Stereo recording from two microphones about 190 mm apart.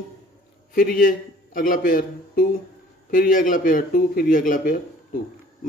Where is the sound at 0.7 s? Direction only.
45° left (ahead or behind).